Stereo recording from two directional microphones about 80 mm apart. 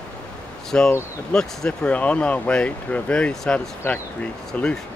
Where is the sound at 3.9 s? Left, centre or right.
Left.